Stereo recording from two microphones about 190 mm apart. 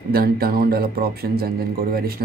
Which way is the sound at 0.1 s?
50° right (ahead or behind).